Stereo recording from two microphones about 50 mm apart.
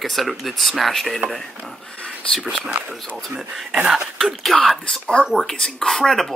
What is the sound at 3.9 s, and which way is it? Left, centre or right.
Speech, centre.